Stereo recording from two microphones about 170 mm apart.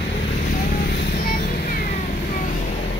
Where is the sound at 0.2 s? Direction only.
50° left (ahead or behind).